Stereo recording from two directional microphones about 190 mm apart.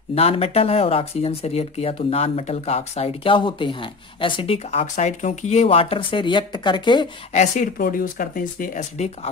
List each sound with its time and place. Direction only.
0.1 s speech: 30° left (ahead or behind)
7.3 s speech: 45° left (ahead or behind)